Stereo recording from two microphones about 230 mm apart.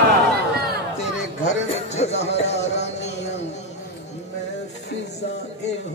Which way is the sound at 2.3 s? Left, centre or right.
Left.